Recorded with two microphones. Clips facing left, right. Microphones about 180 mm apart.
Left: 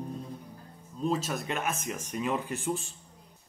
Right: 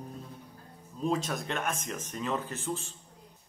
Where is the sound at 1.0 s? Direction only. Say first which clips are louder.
Left 1 dB; 5° left (ahead or behind).